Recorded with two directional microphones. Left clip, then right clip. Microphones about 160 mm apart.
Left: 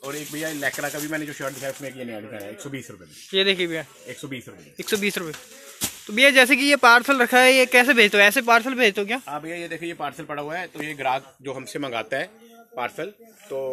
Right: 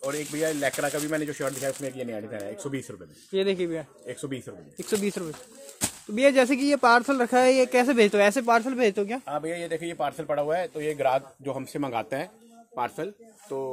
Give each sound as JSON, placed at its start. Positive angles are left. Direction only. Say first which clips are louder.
{"t": 0.0, "sound": "speech", "louder": "right 2 dB", "side_deg": -10}
{"t": 0.6, "sound": "speech", "louder": "even", "side_deg": -30}
{"t": 2.1, "sound": "speech", "louder": "right 1 dB", "side_deg": -25}
{"t": 3.3, "sound": "speech", "louder": "left 5 dB", "side_deg": -5}
{"t": 9.2, "sound": "speech", "louder": "right 1 dB", "side_deg": -35}